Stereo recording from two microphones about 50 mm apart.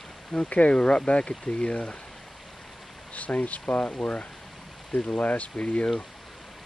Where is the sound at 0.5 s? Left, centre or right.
Left.